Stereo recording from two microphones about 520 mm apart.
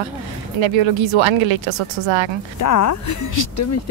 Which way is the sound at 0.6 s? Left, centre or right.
Right.